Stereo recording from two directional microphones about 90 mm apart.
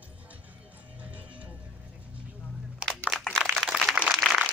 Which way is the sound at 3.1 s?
Centre (ahead or behind).